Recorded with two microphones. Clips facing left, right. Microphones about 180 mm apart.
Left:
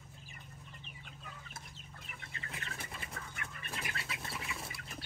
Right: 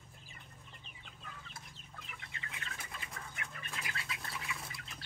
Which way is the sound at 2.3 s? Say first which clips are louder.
Left 3 dB; 35° left (ahead or behind).